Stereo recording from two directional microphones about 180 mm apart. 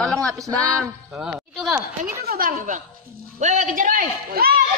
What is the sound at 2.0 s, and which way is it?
A man's voice, 55° right (ahead or behind).